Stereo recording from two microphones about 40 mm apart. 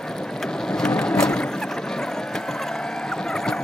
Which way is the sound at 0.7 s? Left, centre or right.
Left.